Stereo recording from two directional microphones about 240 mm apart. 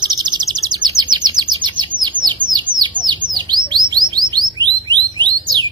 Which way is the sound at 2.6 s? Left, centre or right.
Centre.